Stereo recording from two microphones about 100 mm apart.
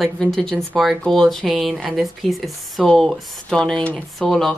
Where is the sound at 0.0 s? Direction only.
5° left (ahead or behind).